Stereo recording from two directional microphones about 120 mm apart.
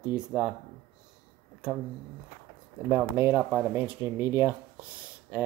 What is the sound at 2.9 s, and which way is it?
Speech, 15° right (ahead or behind).